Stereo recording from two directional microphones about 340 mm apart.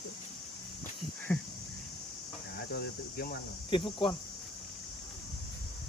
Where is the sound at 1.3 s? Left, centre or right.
Centre.